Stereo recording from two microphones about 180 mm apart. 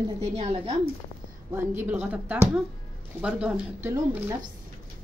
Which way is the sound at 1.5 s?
10° right (ahead or behind).